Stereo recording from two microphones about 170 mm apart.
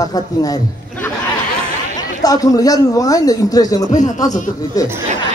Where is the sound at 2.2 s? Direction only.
20° left (ahead or behind).